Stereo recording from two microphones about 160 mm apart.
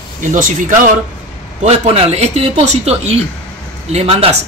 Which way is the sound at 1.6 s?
40° right (ahead or behind).